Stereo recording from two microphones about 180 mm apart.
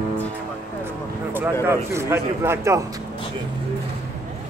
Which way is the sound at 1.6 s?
15° right (ahead or behind).